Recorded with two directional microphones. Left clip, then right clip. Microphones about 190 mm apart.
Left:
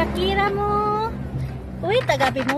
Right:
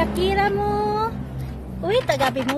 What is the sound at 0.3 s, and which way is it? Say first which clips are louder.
Child singing: left 1 dB; 10° right (ahead or behind).